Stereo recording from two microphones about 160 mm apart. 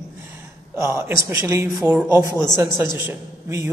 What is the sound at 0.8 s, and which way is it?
A woman's voice, 15° right (ahead or behind).